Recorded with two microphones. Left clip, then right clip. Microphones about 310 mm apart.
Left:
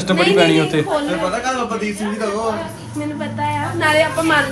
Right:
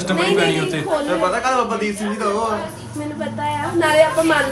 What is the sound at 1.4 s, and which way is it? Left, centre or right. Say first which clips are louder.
Speech: right 2 dB; right.